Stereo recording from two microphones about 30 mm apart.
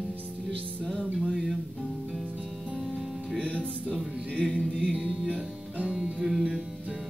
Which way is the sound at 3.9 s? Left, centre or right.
Right.